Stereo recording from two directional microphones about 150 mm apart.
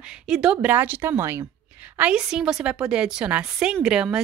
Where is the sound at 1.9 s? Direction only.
5° right (ahead or behind).